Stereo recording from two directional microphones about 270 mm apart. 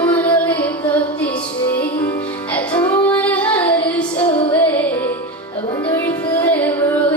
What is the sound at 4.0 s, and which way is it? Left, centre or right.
Music, centre.